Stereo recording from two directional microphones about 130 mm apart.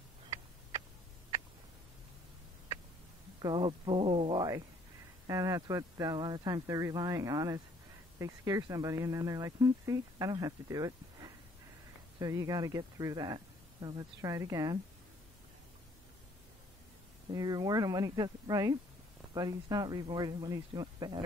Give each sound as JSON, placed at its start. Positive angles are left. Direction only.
{"t": 0.3, "sound": "a sound", "side_deg": -25}
{"t": 3.4, "sound": "speech", "side_deg": -40}
{"t": 17.3, "sound": "speech", "side_deg": -30}